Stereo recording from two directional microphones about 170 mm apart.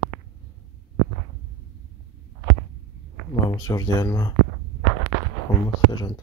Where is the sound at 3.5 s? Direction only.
20° left (ahead or behind).